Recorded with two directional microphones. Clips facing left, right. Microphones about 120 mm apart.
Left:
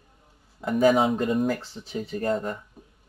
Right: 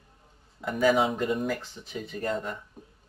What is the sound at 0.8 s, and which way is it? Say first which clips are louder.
Speech: left 3 dB; 40° left (ahead or behind).